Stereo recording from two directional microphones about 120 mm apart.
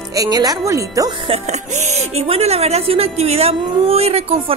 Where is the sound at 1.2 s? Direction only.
65° right (ahead or behind).